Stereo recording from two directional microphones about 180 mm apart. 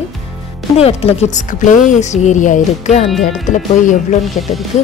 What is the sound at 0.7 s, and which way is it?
Speech, 35° left (ahead or behind).